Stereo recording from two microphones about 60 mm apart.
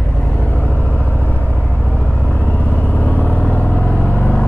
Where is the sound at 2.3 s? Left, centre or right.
Left.